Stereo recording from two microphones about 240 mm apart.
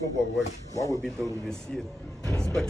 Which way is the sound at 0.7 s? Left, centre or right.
Centre.